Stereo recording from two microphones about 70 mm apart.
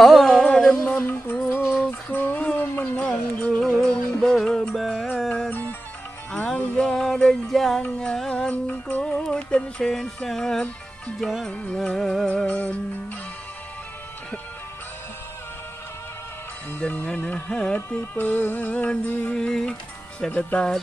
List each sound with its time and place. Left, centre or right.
0.0 s music: centre
0.9 s music: left
1.8 s a sound: left
3.3 s music: centre
5.5 s music: left
6.3 s music: centre
11.1 s music: centre
11.7 s music: centre
12.3 s music: centre
16.8 s music: centre
17.9 s music: left
19.3 s music: centre